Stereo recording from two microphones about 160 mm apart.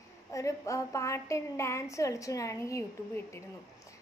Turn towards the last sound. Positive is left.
turn(degrees=20)  # may be behind; listen again after turning